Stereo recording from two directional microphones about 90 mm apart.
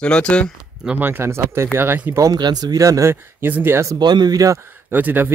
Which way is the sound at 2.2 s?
45° right (ahead or behind).